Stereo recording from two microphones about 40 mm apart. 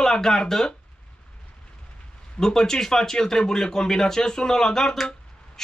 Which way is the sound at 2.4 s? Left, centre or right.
Centre.